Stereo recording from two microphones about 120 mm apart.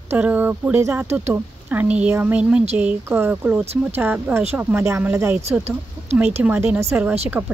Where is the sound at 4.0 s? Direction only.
15° right (ahead or behind).